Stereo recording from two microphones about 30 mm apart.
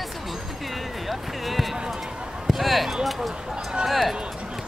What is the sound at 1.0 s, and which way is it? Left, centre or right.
Music, centre.